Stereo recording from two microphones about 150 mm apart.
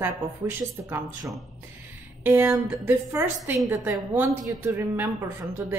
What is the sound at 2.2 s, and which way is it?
A woman's voice, 15° right (ahead or behind).